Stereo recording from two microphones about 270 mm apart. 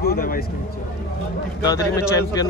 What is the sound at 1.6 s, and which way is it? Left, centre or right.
Speech, centre.